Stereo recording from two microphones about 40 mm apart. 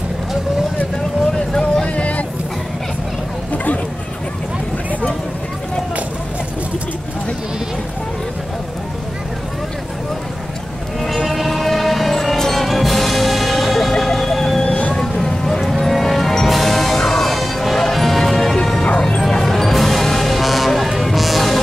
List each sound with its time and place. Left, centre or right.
1.5 s vehicle: centre
2.0 s vehicle: left
3.5 s a sound: left
11.0 s a sound: centre
12.5 s music: centre
14.6 s vehicle: left
15.1 s vehicle: centre
15.8 s music: centre